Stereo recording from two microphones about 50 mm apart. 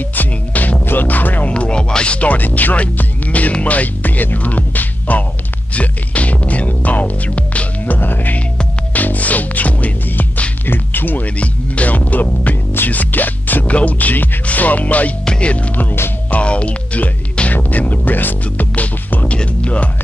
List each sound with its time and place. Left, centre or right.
0.1 s music: left
1.5 s speech: left
5.8 s music: left
11.2 s music: left
12.7 s speech: left
13.7 s music: left
16.3 s speech: left
19.2 s music: left